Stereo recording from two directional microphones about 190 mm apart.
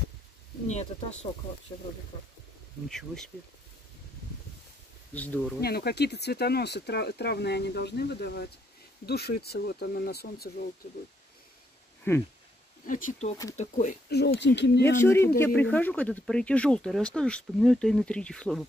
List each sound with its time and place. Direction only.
0.7 s speech: 35° left (ahead or behind)
1.7 s speech: 15° left (ahead or behind)
2.9 s speech: centre (ahead or behind)
5.1 s speech: 10° left (ahead or behind)
5.6 s speech: 55° left (ahead or behind)
12.1 s speech: 10° left (ahead or behind)
12.8 s speech: 45° left (ahead or behind)
14.0 s speech: 55° left (ahead or behind)
14.9 s speech: 15° left (ahead or behind)